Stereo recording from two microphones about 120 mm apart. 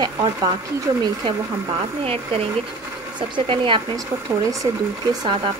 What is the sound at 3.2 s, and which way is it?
Speech, 45° right (ahead or behind).